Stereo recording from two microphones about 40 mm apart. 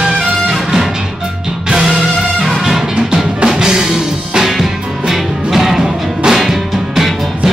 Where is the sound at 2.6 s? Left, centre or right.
Centre.